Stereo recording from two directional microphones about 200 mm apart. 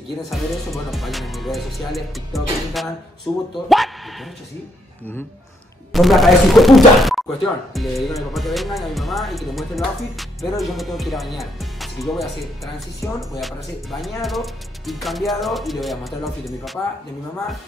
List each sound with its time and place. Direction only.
0.3 s speech: centre (ahead or behind)
3.3 s speech: 20° left (ahead or behind)
3.6 s speech: centre (ahead or behind)
5.9 s speech: centre (ahead or behind)